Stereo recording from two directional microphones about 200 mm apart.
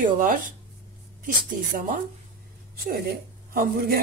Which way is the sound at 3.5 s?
45° right (ahead or behind).